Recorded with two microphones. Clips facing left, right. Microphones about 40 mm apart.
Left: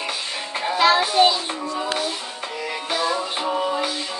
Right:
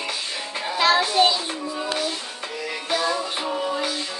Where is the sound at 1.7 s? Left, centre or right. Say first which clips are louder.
Left 1 dB; left.